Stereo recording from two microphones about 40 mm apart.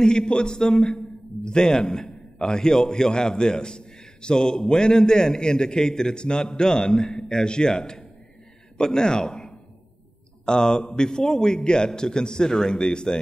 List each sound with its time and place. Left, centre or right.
0.0 s a man's voice: left